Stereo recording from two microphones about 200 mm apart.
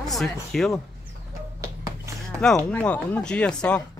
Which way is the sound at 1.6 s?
15° right (ahead or behind).